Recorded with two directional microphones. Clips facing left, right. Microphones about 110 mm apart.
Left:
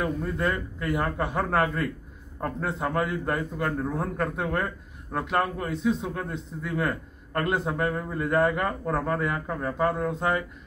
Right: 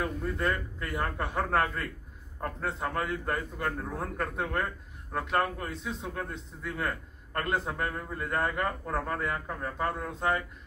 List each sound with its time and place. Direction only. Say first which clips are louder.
0.0 s a man's voice: left 4 dB; 20° left (ahead or behind)